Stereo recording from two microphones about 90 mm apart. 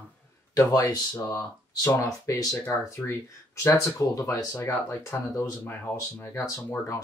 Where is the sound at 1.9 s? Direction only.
40° left (ahead or behind).